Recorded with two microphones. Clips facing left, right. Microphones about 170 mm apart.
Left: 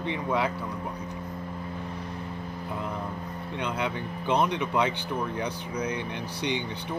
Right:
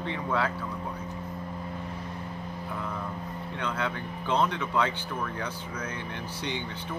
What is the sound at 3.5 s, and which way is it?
Speech, 15° left (ahead or behind).